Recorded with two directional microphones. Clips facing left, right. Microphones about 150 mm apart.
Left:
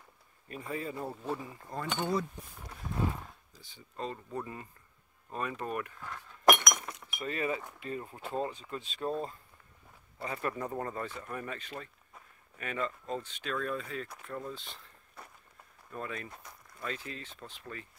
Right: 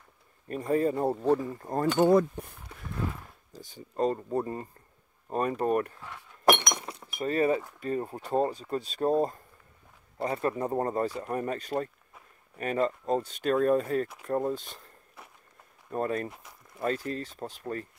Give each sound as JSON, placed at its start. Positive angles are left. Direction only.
{"t": 0.5, "sound": "speech", "side_deg": -45}
{"t": 3.5, "sound": "speech", "side_deg": -45}
{"t": 6.4, "sound": "keys jangling", "side_deg": -30}
{"t": 7.8, "sound": "speech", "side_deg": -40}
{"t": 15.9, "sound": "speech", "side_deg": -45}